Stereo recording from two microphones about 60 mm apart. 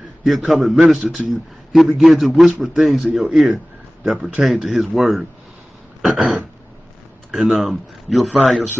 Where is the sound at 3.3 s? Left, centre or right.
Centre.